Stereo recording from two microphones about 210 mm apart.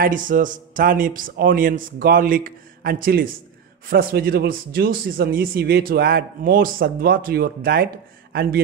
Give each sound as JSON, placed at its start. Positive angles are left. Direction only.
{"t": 0.0, "sound": "a man's voice", "side_deg": -40}